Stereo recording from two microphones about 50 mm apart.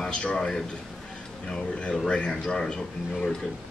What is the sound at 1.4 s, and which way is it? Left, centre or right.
Speech, left.